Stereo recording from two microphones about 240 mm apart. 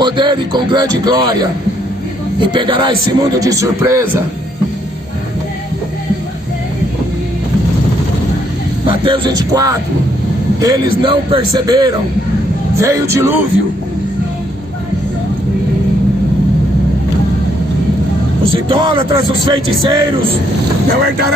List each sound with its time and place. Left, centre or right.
0.0 s speech: centre
2.4 s speech: centre
8.8 s speech: right
18.5 s speech: right